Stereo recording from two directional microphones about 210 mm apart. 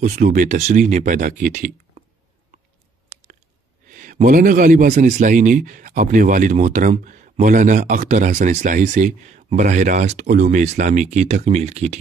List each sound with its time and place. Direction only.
0.0 s speech: 40° right (ahead or behind)
3.9 s speech: 40° right (ahead or behind)